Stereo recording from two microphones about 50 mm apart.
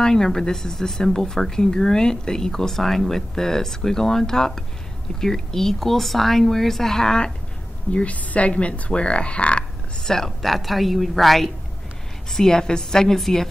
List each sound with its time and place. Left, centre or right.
0.0 s speech: centre
7.9 s speech: left
10.0 s a woman's voice: centre